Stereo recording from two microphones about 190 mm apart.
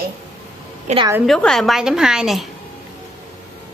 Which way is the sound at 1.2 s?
Centre (ahead or behind).